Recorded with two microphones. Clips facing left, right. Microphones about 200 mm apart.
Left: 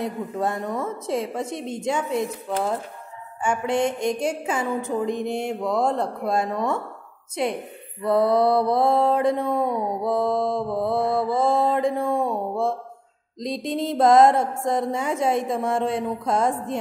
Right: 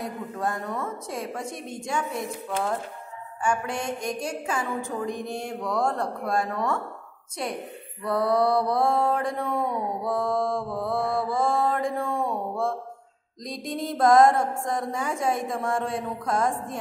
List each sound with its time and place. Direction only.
0.0 s speech: 25° left (ahead or behind)
3.4 s speech: 25° left (ahead or behind)
8.0 s speech: 20° left (ahead or behind)